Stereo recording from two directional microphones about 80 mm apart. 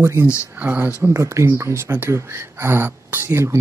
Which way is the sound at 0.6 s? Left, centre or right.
Right.